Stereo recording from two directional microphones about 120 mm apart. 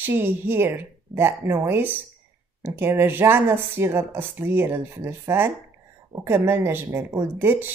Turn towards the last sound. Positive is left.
turn(degrees=-15)  # may be behind; listen again after turning